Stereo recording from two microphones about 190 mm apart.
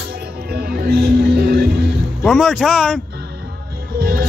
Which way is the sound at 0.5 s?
55° right (ahead or behind).